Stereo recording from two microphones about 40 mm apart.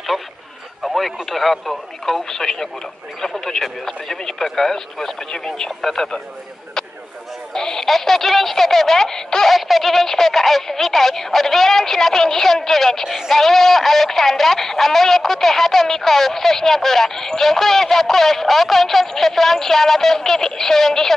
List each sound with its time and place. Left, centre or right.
0.1 s speech: centre
7.5 s speech: centre
9.5 s speech: centre